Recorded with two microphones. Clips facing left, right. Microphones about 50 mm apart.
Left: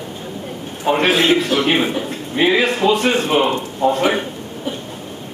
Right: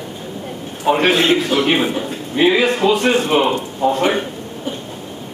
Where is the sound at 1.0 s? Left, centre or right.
Centre.